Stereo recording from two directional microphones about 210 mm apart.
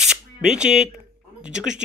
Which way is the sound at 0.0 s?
5° right (ahead or behind).